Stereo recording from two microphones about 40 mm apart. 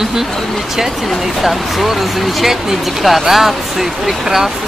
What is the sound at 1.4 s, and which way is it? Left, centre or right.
Speech, centre.